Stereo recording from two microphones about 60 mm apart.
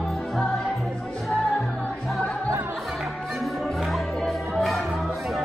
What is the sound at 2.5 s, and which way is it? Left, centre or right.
Music, right.